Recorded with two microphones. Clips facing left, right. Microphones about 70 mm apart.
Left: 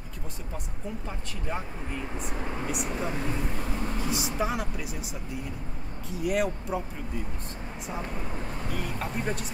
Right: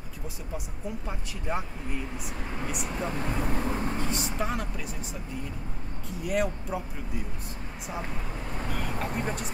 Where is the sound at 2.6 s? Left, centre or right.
Centre.